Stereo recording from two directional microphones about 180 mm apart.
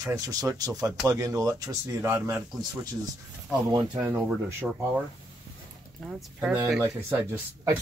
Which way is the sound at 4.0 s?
10° right (ahead or behind).